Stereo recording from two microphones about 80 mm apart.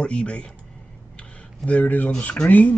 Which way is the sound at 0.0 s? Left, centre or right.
Centre.